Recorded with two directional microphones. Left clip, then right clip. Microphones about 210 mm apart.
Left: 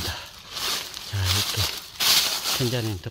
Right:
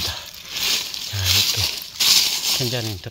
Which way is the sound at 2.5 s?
20° left (ahead or behind).